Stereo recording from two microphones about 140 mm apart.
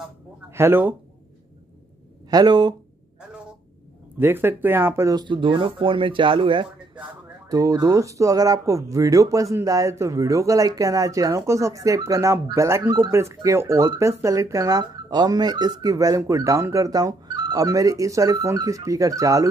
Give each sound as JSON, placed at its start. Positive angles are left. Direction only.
{"t": 0.5, "sound": "speech", "side_deg": -15}
{"t": 2.3, "sound": "speech", "side_deg": -30}
{"t": 3.2, "sound": "a sound", "side_deg": -5}
{"t": 4.2, "sound": "speech", "side_deg": -15}
{"t": 5.1, "sound": "speech", "side_deg": -35}
{"t": 7.4, "sound": "speech", "side_deg": -25}